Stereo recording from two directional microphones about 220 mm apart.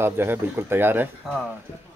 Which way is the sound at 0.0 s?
10° right (ahead or behind).